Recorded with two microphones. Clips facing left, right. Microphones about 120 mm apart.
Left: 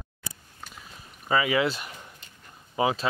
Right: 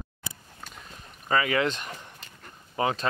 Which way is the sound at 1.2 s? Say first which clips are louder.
Left 1 dB; 10° left (ahead or behind).